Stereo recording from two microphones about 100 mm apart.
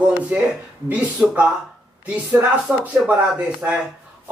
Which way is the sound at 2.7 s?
10° right (ahead or behind).